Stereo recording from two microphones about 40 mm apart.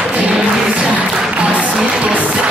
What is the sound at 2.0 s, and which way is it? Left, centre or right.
Music, right.